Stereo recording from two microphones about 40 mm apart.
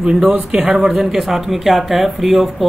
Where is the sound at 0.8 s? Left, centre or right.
Centre.